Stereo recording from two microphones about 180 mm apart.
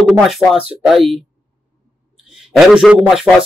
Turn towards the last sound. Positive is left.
turn(degrees=0)  # may be behind; listen again after turning